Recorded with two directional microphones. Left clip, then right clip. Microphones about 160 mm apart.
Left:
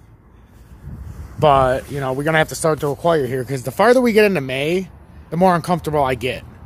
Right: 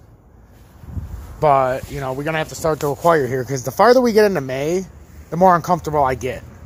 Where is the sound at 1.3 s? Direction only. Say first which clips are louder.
Left 1 dB; 20° left (ahead or behind).